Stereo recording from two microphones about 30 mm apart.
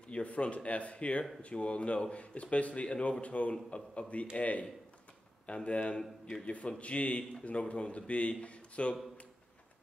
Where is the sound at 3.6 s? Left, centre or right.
Left.